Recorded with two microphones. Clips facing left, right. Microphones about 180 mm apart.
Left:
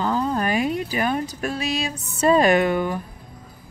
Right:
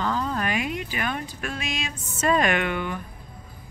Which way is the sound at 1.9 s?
60° left (ahead or behind).